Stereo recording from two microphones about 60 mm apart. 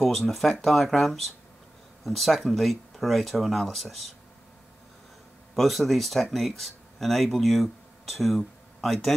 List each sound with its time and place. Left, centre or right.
0.0 s speech: centre
5.6 s speech: centre